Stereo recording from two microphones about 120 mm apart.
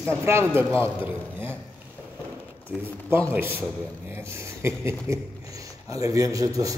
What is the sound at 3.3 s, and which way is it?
A man's voice, 15° right (ahead or behind).